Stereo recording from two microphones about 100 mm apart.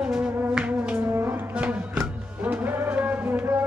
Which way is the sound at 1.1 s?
20° right (ahead or behind).